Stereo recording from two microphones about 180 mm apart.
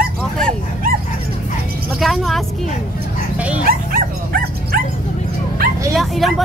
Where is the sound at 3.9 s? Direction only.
55° right (ahead or behind).